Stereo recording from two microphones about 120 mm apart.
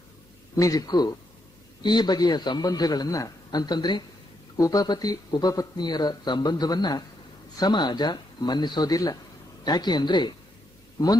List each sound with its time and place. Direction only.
0.6 s speech: 30° left (ahead or behind)